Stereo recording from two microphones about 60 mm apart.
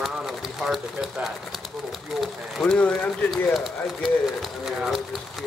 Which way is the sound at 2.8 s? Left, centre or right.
Left.